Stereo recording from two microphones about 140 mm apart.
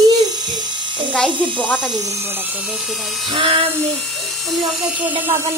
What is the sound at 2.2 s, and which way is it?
Speech, 15° right (ahead or behind).